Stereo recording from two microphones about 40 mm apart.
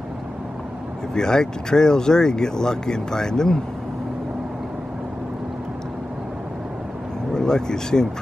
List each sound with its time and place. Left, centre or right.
1.1 s speech: centre
7.3 s speech: centre